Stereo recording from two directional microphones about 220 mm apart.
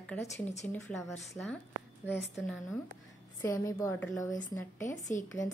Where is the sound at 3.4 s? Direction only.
15° left (ahead or behind).